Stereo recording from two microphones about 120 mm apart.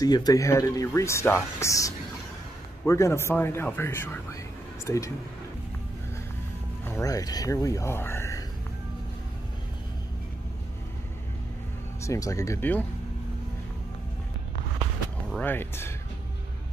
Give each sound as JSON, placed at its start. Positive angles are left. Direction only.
{"t": 0.0, "sound": "speech", "side_deg": 35}
{"t": 6.8, "sound": "music", "side_deg": 20}
{"t": 7.1, "sound": "speech", "side_deg": 30}
{"t": 12.0, "sound": "speech", "side_deg": 25}
{"t": 15.4, "sound": "speech", "side_deg": 20}